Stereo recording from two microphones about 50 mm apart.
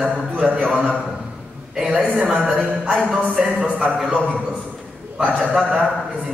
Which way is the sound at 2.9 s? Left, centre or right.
Centre.